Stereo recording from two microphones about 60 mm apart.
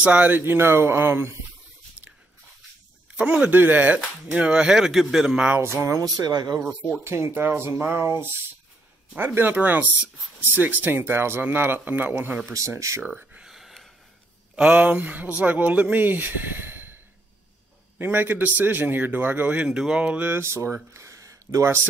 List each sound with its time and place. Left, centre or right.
0.0 s a man's voice: right
3.2 s speech: right
6.1 s speech: right
6.6 s speech: right
7.1 s a man's voice: right
12.5 s speech: right
13.0 s a sound: right
13.5 s a sound: centre
14.5 s a man's voice: right
20.4 s speech: right